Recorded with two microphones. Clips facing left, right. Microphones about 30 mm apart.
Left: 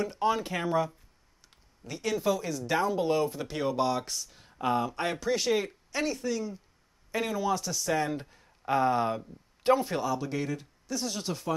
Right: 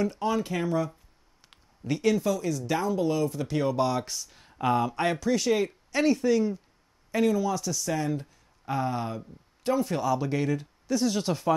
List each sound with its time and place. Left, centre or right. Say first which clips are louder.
0.0 s speech: right 1 dB; centre
1.8 s speech: right 10 dB; centre
2.1 s speech: right 2 dB; centre
3.3 s speech: right 3 dB; centre
5.2 s speech: right 3 dB; centre
5.5 s speech: right 3 dB; centre
6.0 s speech: right 10 dB; centre
7.1 s speech: right 4 dB; centre; by 9.8 s left
9.8 s speech: right 3 dB; centre
10.1 s speech: right 5 dB; centre